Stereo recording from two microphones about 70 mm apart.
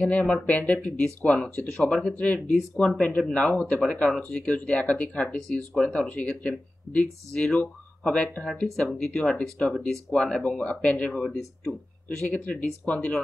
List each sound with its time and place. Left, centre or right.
0.2 s speech: centre
1.5 s speech: left
1.8 s speech: centre
2.1 s speech: centre
2.7 s speech: centre
3.0 s speech: centre
3.8 s speech: centre
8.9 s speech: centre